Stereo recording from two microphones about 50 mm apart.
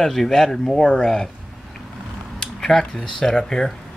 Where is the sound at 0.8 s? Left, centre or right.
Centre.